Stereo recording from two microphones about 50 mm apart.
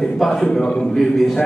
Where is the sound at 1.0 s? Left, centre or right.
Centre.